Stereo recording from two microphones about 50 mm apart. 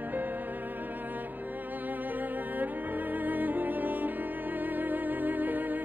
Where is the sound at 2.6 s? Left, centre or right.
Right.